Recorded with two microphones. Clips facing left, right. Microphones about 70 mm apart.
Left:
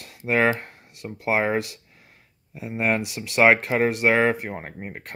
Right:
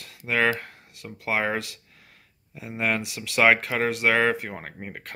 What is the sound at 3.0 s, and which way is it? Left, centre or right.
Speech, left.